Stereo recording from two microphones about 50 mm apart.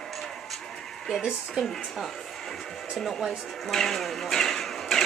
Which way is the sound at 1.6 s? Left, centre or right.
Centre.